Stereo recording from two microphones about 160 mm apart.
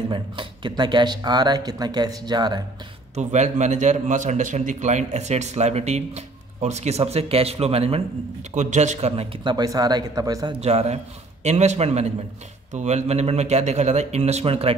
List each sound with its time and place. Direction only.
0.1 s speech: 30° right (ahead or behind)
3.2 s a man's voice: 45° right (ahead or behind); by 10.5 s 25° right (ahead or behind)
10.6 s a man's voice: 40° right (ahead or behind)